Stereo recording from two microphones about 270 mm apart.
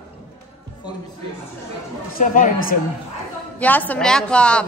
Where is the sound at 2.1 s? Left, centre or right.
Left.